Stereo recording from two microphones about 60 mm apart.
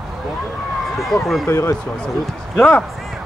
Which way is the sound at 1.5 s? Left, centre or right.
Left.